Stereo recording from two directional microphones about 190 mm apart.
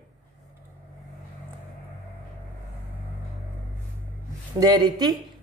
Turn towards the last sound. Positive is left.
turn(degrees=-20)  # may be behind; listen again after turning